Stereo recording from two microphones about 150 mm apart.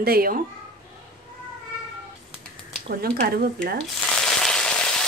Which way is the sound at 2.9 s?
90° right.